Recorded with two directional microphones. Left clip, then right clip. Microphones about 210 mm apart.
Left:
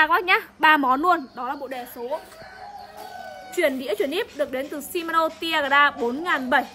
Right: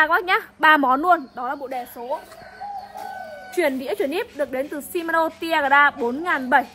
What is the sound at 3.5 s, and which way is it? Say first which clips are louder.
A woman's voice: right 1 dB; 20° right (ahead or behind).